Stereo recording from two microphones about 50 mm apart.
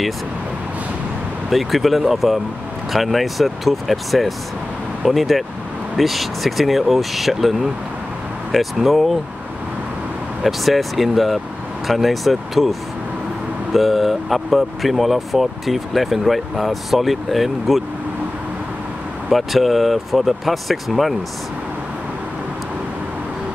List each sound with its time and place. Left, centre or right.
1.5 s speech: centre
10.4 s speech: centre
13.7 s speech: centre
19.2 s speech: centre